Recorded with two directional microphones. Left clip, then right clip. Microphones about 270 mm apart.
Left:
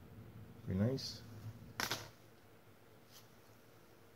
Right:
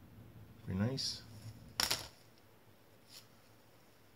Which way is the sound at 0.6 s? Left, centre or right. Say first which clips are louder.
Left 1 dB; centre.